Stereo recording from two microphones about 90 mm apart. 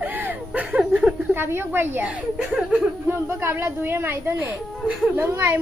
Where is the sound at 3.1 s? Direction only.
25° right (ahead or behind).